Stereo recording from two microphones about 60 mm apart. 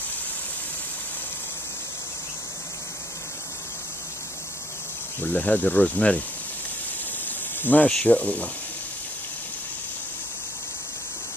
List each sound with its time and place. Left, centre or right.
5.2 s speech: left
7.2 s a sound: left
8.1 s speech: left